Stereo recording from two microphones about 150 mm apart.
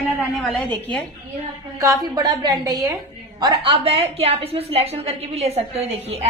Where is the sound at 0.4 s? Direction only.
10° left (ahead or behind).